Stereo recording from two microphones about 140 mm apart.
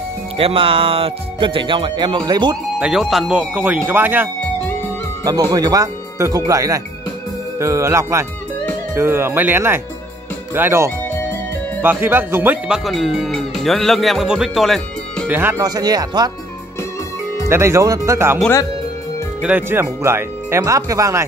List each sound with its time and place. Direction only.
0.4 s speech: 40° right (ahead or behind)
2.8 s speech: 5° right (ahead or behind)
5.2 s speech: 25° right (ahead or behind)
12.6 s speech: 5° right (ahead or behind)
15.2 s speech: 15° right (ahead or behind)
15.6 s speech: 30° right (ahead or behind)
17.5 s speech: 20° right (ahead or behind)
19.4 s speech: 10° right (ahead or behind)